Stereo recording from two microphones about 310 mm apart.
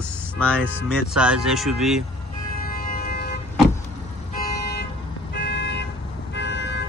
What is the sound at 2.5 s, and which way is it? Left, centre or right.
Music, left.